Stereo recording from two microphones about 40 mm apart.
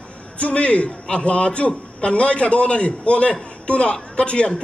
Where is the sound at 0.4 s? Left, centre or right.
Left.